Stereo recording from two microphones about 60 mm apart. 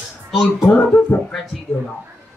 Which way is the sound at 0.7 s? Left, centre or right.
Left.